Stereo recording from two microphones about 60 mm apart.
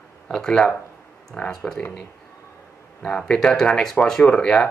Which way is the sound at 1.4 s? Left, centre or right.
Centre.